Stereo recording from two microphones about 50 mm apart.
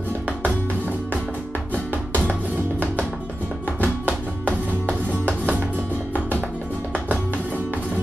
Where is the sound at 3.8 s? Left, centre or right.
Right.